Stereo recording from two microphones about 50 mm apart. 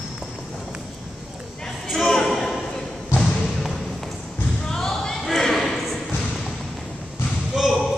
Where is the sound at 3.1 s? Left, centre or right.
Left.